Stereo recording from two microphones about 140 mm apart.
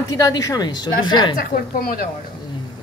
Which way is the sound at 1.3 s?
90° left.